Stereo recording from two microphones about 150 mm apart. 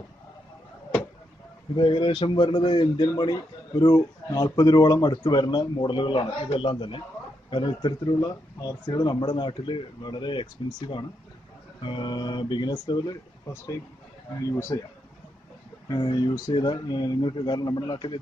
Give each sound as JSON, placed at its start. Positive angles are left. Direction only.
{"t": 1.8, "sound": "a man's voice", "side_deg": 35}
{"t": 14.6, "sound": "speech", "side_deg": 15}
{"t": 15.9, "sound": "speech", "side_deg": 30}